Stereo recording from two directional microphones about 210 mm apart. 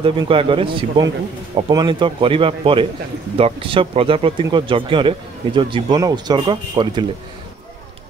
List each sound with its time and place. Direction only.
0.0 s speech: 25° right (ahead or behind)